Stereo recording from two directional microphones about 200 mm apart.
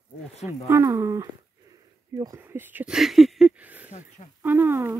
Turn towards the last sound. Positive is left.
turn(degrees=-15)  # may be behind; listen again after turning